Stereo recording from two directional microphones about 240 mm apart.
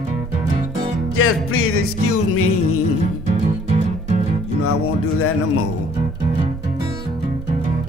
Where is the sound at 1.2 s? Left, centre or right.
Left.